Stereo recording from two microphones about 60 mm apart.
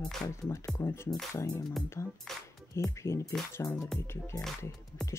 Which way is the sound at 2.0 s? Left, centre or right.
Left.